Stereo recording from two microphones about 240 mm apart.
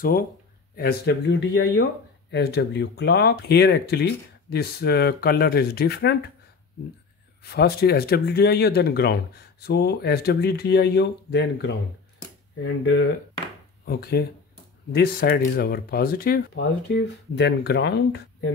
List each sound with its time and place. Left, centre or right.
0.7 s speech: left
7.4 s speech: left